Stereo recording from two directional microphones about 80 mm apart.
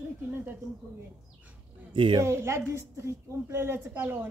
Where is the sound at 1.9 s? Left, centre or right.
Right.